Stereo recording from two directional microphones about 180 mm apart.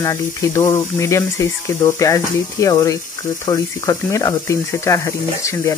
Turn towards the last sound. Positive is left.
turn(degrees=15)  # may be behind; listen again after turning